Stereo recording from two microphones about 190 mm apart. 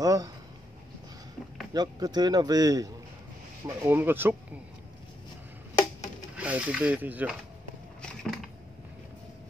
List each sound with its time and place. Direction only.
0.0 s speech: 20° right (ahead or behind)
1.7 s speech: 20° right (ahead or behind)
6.3 s speech: 5° right (ahead or behind)
8.0 s a sound: centre (ahead or behind)